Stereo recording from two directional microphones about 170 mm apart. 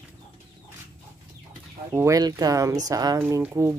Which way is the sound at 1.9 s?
15° right (ahead or behind).